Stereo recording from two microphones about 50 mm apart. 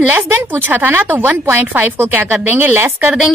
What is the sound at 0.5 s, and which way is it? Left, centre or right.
Speech, right.